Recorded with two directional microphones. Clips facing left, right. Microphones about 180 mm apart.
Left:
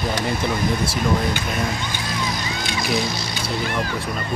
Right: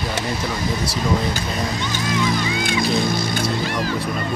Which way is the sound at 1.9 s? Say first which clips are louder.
Right 5 dB; 50° right (ahead or behind).